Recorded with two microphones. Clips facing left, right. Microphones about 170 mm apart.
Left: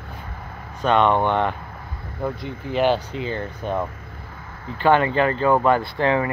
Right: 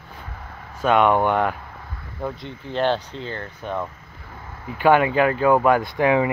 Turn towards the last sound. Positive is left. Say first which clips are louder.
# right 2 dB
turn(degrees=-10)  # may be behind; listen again after turning